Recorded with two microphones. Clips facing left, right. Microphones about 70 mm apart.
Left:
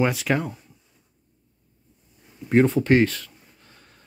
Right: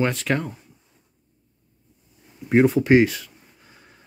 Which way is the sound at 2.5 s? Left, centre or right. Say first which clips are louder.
Right 2 dB; centre.